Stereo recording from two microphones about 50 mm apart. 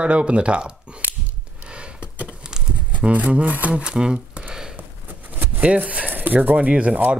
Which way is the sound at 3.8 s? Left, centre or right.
Centre.